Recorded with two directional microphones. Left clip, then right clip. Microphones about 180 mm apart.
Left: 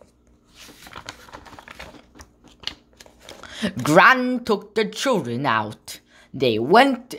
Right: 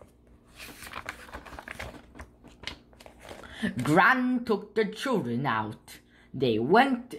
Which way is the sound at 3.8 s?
45° left (ahead or behind).